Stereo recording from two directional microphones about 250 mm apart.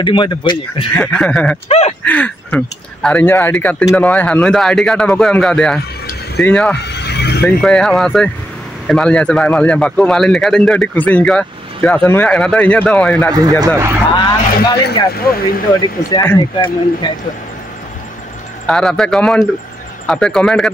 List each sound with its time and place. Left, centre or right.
0.0 s speech: centre
0.9 s a man's voice: centre
1.7 s a sound: left
2.0 s a man's voice: centre
6.8 s vehicle: left
7.4 s a man's voice: centre
13.3 s speech: centre
14.1 s speech: centre
16.1 s speech: centre
18.7 s a man's voice: centre